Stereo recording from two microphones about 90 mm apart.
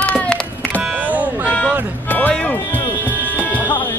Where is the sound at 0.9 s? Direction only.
15° right (ahead or behind).